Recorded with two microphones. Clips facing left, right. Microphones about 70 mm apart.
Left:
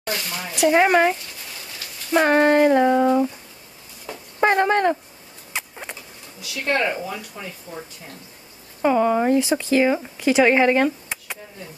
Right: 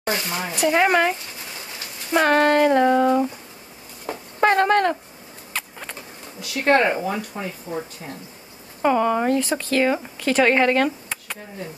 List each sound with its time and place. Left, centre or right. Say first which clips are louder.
0.0 s speech: right 3 dB; right
0.7 s speech: left 2 dB; centre
2.1 s speech: left 1 dB; centre
2.7 s a sound: even; centre
4.4 s speech: right 1 dB; centre
5.5 s rodents: even; centre
6.4 s speech: right 5 dB; right
7.2 s speech: right 5 dB; right
8.8 s speech: left 1 dB; centre